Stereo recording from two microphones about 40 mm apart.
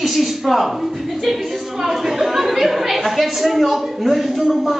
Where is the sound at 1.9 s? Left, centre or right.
Centre.